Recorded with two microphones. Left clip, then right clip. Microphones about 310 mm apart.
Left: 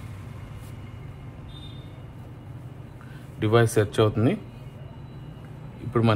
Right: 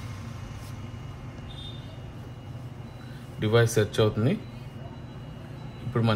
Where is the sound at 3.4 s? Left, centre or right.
Left.